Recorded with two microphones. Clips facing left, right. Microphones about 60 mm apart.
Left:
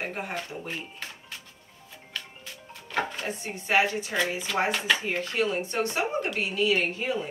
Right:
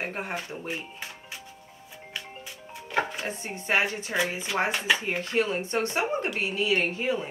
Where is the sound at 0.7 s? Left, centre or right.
Centre.